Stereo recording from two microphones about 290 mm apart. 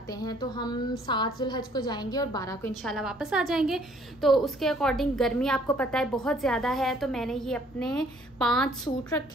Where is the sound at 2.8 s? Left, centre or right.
Centre.